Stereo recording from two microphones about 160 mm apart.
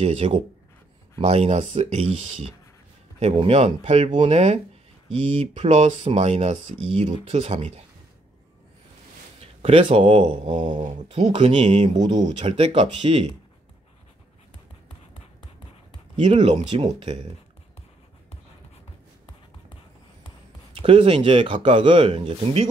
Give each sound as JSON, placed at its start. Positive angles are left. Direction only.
{"t": 0.0, "sound": "speech", "side_deg": -40}
{"t": 9.4, "sound": "speech", "side_deg": -40}
{"t": 11.1, "sound": "speech", "side_deg": -45}
{"t": 16.2, "sound": "speech", "side_deg": -45}
{"t": 20.8, "sound": "speech", "side_deg": -35}